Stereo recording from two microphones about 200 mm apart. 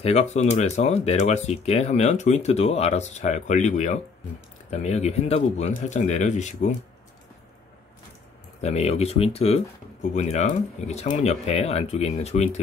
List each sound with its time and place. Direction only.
0.0 s speech: 35° left (ahead or behind)
8.5 s speech: 30° left (ahead or behind)